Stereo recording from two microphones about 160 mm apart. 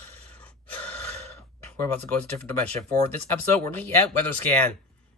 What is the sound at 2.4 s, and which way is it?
Speech, 10° left (ahead or behind).